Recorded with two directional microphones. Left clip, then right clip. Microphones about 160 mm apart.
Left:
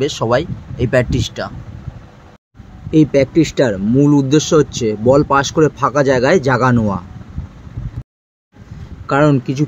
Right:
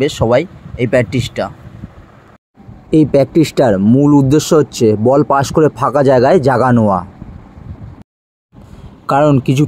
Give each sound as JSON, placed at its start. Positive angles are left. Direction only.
{"t": 0.0, "sound": "speech", "side_deg": -20}
{"t": 2.9, "sound": "speech", "side_deg": -30}
{"t": 9.0, "sound": "a man's voice", "side_deg": -40}